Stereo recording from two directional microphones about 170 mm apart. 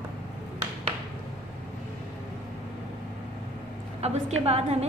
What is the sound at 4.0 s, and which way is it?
Speech, 40° right (ahead or behind).